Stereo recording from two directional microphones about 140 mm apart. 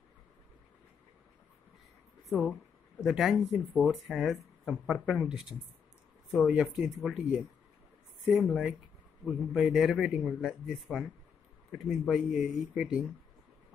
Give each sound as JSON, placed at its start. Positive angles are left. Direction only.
{"t": 3.0, "sound": "speech", "side_deg": 0}